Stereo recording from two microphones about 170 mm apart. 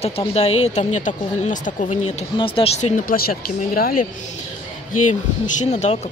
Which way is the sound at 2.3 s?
30° left (ahead or behind).